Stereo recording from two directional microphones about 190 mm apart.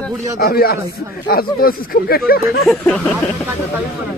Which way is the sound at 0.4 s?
55° left (ahead or behind).